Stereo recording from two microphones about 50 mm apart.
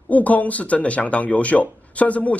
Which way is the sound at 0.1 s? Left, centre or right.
Left.